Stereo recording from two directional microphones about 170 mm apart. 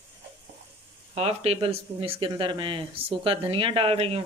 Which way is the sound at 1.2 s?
35° right (ahead or behind).